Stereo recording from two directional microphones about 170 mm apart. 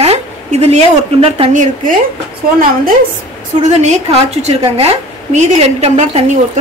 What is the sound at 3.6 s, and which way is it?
Speech, 40° right (ahead or behind).